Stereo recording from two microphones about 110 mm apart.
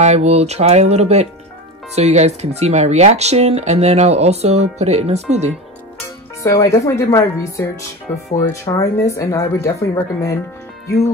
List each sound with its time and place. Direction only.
0.0 s speech: 90° right
6.4 s speech: 25° left (ahead or behind)